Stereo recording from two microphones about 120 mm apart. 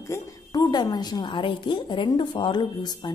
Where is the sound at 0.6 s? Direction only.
35° left (ahead or behind).